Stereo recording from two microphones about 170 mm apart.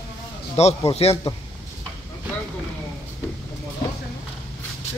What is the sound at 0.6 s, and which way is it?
Speech, 40° left (ahead or behind).